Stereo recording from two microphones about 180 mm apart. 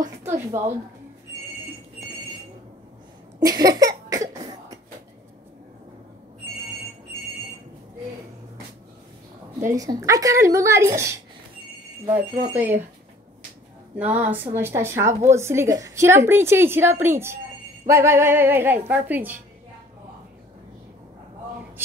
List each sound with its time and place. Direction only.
0.2 s a woman's voice: 15° right (ahead or behind)
3.3 s cough: 20° right (ahead or behind)
9.6 s a woman's voice: 15° right (ahead or behind)
13.9 s a woman's voice: 10° right (ahead or behind)